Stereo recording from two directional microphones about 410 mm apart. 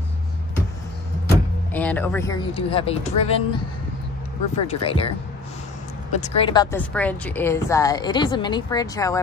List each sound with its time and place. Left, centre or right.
1.3 s speech: centre
4.6 s speech: centre
6.1 s speech: centre